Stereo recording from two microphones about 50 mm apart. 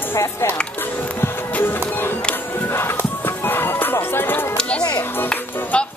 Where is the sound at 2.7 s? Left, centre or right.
Left.